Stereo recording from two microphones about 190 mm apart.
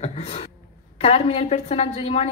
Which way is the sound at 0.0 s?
30° left (ahead or behind).